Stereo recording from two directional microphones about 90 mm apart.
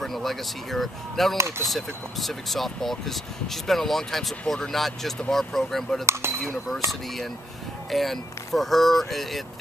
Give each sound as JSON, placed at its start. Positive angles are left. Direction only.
{"t": 0.0, "sound": "speech", "side_deg": 0}
{"t": 7.9, "sound": "speech", "side_deg": 0}